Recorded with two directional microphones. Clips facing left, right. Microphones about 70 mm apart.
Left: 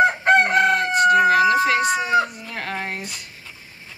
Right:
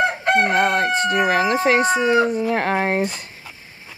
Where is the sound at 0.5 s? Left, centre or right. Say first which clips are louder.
Even; right.